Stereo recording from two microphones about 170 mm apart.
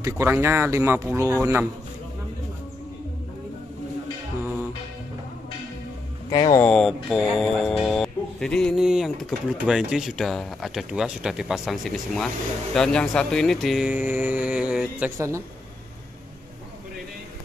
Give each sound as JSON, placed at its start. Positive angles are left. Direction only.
{"t": 0.0, "sound": "speech", "side_deg": -15}
{"t": 6.3, "sound": "speech", "side_deg": 25}
{"t": 6.6, "sound": "speech", "side_deg": 0}